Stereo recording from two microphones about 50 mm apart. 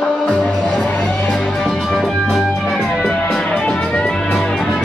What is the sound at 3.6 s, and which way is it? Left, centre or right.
Music, centre.